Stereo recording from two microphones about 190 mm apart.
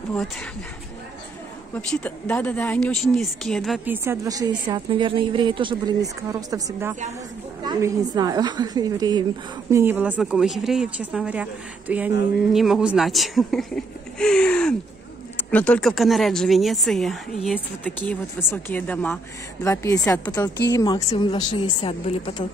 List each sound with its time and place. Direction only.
1.8 s speech: 5° left (ahead or behind)
3.8 s a woman's voice: 10° right (ahead or behind); by 22.5 s 25° left (ahead or behind)